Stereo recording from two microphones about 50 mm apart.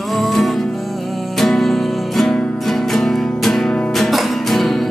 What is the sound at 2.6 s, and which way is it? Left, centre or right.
Music, centre.